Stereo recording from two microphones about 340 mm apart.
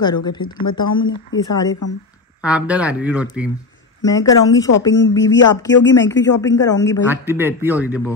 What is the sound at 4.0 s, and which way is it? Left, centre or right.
Speech, centre.